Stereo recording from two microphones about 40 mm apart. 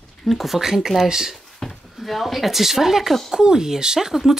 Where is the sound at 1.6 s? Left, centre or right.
Centre.